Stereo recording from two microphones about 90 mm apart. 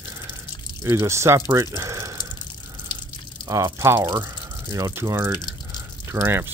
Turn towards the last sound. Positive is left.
turn(degrees=-25)  # may be behind; listen again after turning